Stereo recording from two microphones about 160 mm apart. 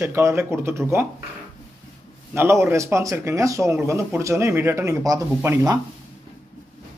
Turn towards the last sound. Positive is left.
turn(degrees=-20)  # may be behind; listen again after turning